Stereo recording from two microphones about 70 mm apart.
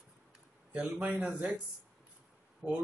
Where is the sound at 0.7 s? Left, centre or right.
Right.